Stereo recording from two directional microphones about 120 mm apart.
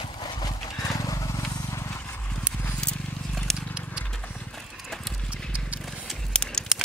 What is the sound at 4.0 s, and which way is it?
Clip-clop, 10° left (ahead or behind).